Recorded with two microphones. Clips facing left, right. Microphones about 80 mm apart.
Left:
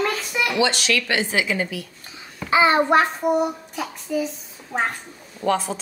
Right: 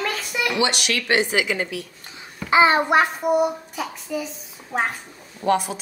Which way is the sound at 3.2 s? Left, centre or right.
Centre.